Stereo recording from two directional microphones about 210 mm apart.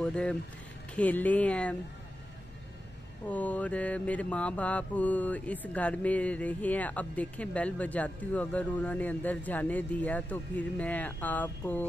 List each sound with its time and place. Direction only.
0.0 s speech: 5° left (ahead or behind)
0.9 s mantra: 5° left (ahead or behind)
3.3 s mantra: 5° left (ahead or behind)